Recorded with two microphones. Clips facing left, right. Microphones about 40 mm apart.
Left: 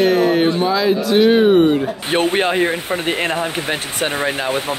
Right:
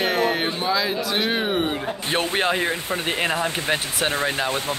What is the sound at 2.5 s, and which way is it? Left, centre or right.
Speech, left.